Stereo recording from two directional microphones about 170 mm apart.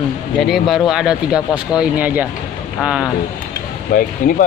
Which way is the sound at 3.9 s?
55° left (ahead or behind).